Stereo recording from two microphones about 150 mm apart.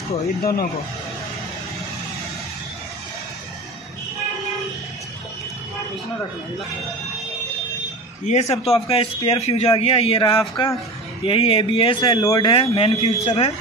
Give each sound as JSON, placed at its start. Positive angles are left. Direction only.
{"t": 0.4, "sound": "speech", "side_deg": 90}
{"t": 8.3, "sound": "a man's voice", "side_deg": 45}
{"t": 10.5, "sound": "speech", "side_deg": 25}
{"t": 11.2, "sound": "speech", "side_deg": 35}
{"t": 12.7, "sound": "a man's voice", "side_deg": 45}